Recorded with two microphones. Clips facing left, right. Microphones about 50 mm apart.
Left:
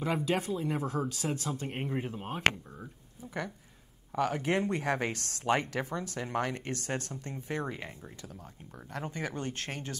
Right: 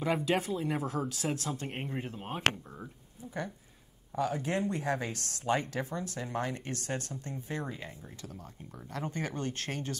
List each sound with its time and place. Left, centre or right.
0.0 s speech: centre
2.2 s speech: centre
4.1 s speech: left
9.4 s speech: left